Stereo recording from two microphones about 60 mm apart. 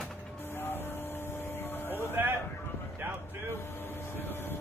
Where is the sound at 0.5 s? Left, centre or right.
Left.